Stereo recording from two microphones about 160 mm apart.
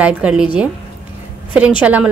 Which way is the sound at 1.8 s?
10° right (ahead or behind).